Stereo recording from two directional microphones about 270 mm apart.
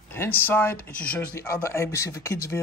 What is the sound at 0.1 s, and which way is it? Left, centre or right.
Speech, centre.